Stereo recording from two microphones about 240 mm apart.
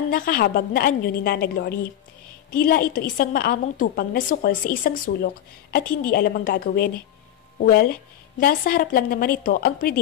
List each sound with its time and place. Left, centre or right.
0.1 s a woman's voice: left